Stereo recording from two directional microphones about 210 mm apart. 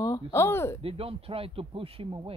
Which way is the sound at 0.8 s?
25° right (ahead or behind).